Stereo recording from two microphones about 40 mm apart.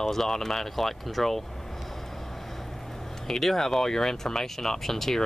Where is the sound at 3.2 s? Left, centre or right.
Centre.